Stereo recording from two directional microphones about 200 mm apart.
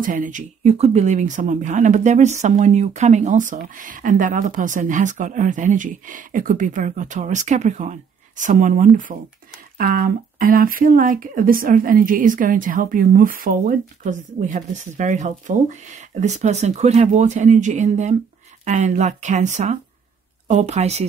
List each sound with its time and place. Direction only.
0.0 s speech: 40° right (ahead or behind)